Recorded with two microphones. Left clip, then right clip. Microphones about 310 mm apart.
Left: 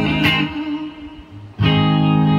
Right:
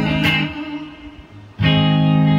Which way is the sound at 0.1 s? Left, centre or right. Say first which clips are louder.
Even; centre.